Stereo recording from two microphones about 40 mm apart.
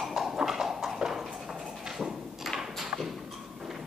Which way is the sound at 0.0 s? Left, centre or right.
Centre.